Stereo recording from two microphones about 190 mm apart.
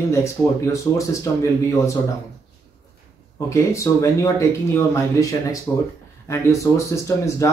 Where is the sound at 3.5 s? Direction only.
15° left (ahead or behind).